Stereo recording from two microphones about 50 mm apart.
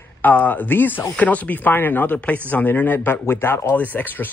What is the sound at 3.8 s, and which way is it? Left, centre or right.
Speech, left.